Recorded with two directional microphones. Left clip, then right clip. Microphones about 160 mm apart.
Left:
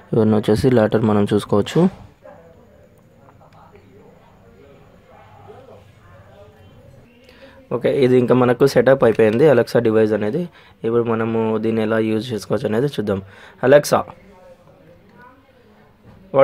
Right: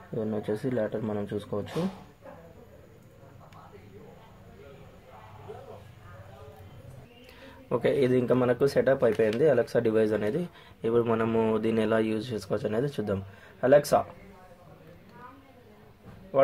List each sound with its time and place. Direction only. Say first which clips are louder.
0.1 s speech: left 15 dB; 60° left (ahead or behind)
7.4 s a sound: left 7 dB; 20° left (ahead or behind)
7.9 s speech: left 11 dB; 45° left (ahead or behind)